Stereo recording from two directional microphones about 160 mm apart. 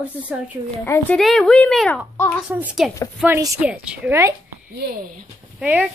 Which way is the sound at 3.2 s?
15° right (ahead or behind).